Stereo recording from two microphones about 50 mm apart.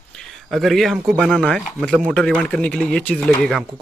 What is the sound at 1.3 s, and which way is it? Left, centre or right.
Speech, centre.